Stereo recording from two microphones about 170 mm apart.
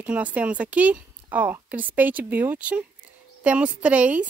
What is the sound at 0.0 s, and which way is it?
Speech, 10° right (ahead or behind).